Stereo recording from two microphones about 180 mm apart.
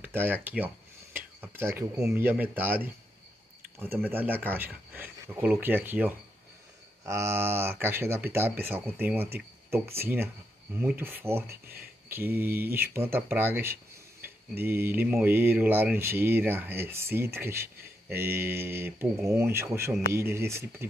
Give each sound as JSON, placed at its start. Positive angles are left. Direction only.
{"t": 0.0, "sound": "speech", "side_deg": -10}
{"t": 1.1, "sound": "a sound", "side_deg": -15}
{"t": 2.0, "sound": "speech", "side_deg": -10}
{"t": 11.6, "sound": "speech", "side_deg": -60}
{"t": 12.1, "sound": "speech", "side_deg": -10}